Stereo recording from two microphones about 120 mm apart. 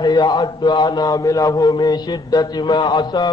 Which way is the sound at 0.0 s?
35° left (ahead or behind).